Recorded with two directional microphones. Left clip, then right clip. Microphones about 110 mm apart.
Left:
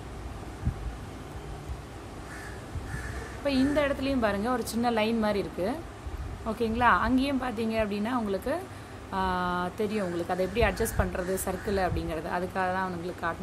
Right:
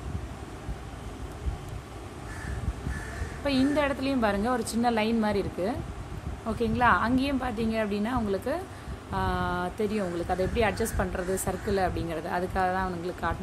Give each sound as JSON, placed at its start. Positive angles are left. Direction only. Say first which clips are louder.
{"t": 3.4, "sound": "a woman's voice", "louder": "even", "side_deg": -20}